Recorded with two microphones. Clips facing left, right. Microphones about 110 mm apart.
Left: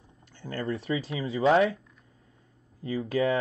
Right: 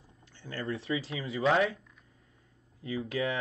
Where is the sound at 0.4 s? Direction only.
50° left (ahead or behind).